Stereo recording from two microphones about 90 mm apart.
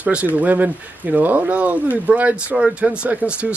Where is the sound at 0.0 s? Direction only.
15° right (ahead or behind).